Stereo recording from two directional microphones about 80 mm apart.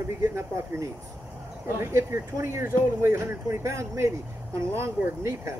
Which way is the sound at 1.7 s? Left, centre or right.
Right.